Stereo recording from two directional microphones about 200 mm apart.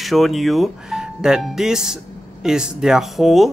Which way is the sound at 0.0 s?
Centre (ahead or behind).